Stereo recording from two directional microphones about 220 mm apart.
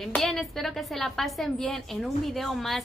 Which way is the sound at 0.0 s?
Centre (ahead or behind).